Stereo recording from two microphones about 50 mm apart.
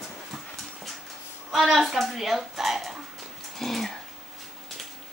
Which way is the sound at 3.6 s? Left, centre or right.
Centre.